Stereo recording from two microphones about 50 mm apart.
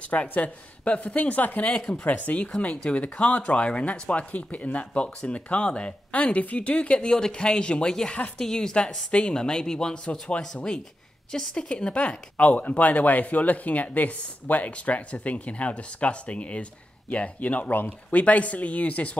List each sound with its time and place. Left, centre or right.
0.1 s speech: left
7.1 s a woman's voice: centre; by 19.1 s left